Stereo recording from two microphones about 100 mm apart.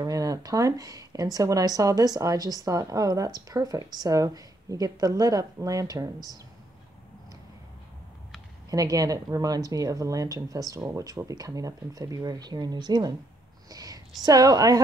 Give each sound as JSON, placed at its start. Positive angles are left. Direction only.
{"t": 0.0, "sound": "speech", "side_deg": -35}
{"t": 8.6, "sound": "speech", "side_deg": -35}
{"t": 13.7, "sound": "a sound", "side_deg": -35}
{"t": 14.2, "sound": "speech", "side_deg": -35}